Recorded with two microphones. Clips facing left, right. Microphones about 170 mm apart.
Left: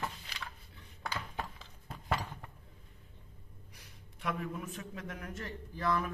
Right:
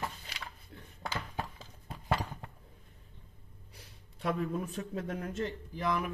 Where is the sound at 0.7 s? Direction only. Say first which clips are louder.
Right 7 dB; 50° right (ahead or behind).